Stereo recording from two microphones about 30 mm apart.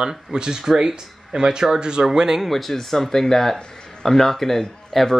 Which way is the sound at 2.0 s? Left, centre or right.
Centre.